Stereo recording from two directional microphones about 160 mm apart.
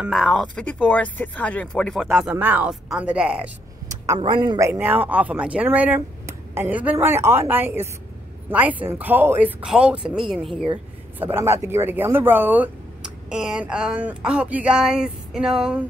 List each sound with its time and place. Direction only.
0.0 s speech: centre (ahead or behind)
2.1 s speech: 10° right (ahead or behind)
3.9 s a sound: 20° right (ahead or behind)
4.2 s speech: 30° right (ahead or behind)
4.6 s speech: 10° right (ahead or behind)
11.1 s speech: 15° right (ahead or behind)